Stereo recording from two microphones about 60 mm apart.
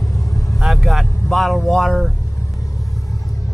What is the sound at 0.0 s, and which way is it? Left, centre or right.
Vehicle, left.